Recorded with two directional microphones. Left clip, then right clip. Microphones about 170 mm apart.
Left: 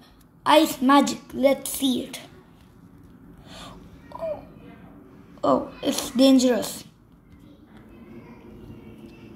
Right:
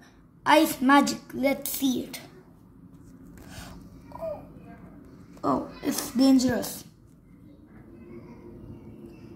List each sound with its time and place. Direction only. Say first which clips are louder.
0.5 s a child's voice: left 2 dB; centre (ahead or behind)
3.4 s a sound: left 4 dB; centre (ahead or behind)
5.4 s a woman's voice: left 6 dB; 15° left (ahead or behind)
6.4 s a child's voice: left 6 dB; centre (ahead or behind)